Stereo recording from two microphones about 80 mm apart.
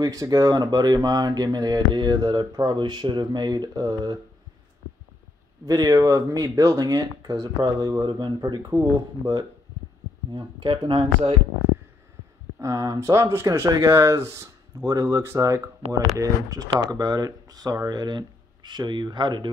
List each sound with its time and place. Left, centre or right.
0.0 s speech: right
5.7 s speech: right
8.0 s speech: right
8.7 s speech: right
9.2 s speech: right
12.5 s speech: right
13.7 s speech: right
13.9 s speech: right